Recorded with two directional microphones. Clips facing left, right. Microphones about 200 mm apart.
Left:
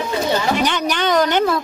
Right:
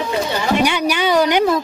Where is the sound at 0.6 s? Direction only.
10° right (ahead or behind).